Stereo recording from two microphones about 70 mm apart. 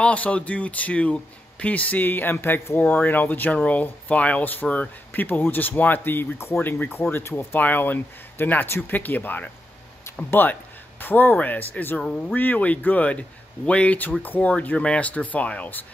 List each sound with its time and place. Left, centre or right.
0.0 s speech: centre